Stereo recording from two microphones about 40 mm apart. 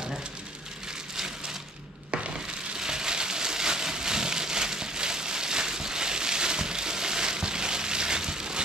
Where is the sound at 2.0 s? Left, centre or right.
Right.